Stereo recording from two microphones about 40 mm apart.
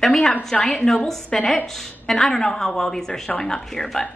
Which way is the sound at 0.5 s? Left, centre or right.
Left.